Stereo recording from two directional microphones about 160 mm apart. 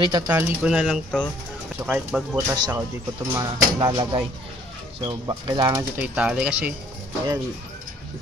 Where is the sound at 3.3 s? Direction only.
20° right (ahead or behind).